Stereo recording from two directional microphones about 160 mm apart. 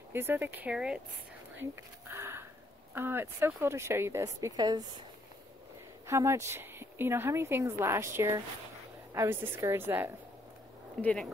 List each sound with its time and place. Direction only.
0.1 s a woman's voice: 15° right (ahead or behind)
1.6 s a woman's voice: 15° right (ahead or behind)
6.0 s a woman's voice: 20° right (ahead or behind)
11.0 s speech: 5° left (ahead or behind)